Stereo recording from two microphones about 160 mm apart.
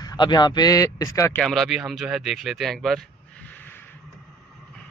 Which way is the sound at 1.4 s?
Centre (ahead or behind).